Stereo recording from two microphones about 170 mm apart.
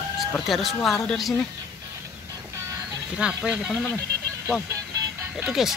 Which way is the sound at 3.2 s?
5° right (ahead or behind).